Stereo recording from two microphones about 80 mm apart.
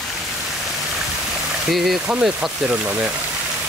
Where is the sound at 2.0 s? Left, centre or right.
Centre.